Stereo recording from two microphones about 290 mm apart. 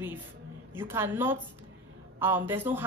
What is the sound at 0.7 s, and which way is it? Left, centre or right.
A woman's voice, centre.